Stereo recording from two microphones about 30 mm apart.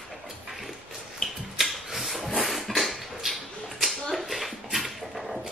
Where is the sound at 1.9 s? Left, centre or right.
Centre.